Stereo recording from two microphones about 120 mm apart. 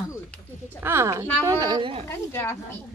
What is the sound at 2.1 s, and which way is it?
Speech, 20° left (ahead or behind).